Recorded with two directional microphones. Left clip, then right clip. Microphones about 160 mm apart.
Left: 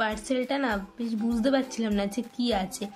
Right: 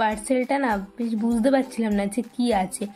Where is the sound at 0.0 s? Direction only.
20° right (ahead or behind).